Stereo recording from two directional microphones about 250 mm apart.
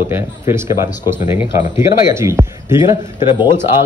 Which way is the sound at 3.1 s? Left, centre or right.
Centre.